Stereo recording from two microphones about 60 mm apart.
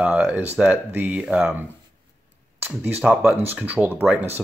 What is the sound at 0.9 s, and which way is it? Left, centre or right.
Speech, right.